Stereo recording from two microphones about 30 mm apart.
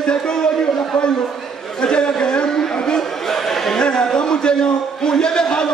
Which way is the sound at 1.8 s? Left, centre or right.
Left.